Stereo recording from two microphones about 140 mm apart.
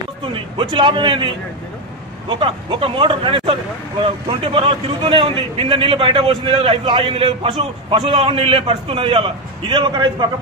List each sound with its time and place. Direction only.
0.2 s a man's voice: 35° right (ahead or behind)